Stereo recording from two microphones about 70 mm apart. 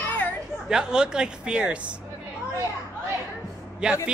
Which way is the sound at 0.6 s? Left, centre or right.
Centre.